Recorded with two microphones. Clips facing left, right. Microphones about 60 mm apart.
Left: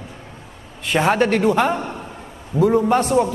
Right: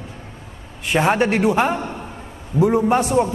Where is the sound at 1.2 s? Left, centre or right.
Centre.